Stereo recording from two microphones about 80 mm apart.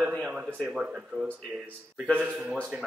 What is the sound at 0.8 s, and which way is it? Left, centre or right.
Speech, centre.